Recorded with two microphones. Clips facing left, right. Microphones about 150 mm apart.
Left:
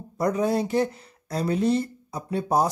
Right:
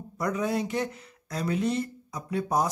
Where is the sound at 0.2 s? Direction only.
35° left (ahead or behind).